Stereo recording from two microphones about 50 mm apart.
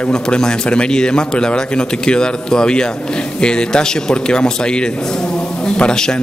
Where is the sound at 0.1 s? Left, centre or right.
Centre.